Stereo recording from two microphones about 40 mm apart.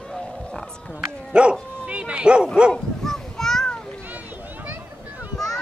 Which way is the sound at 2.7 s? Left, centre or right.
Centre.